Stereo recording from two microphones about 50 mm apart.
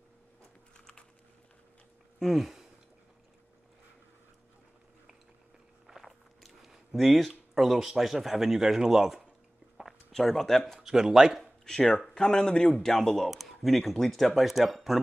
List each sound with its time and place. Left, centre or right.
0.7 s a sound: centre
2.1 s speech: centre
5.9 s a sound: centre
7.5 s speech: centre
10.1 s speech: centre
10.8 s speech: centre
11.6 s speech: centre